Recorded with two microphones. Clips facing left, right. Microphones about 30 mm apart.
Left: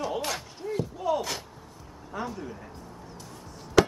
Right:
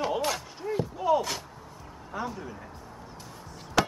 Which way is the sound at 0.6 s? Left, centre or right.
Centre.